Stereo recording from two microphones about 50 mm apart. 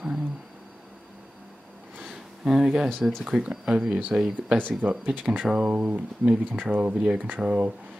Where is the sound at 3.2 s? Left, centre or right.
Centre.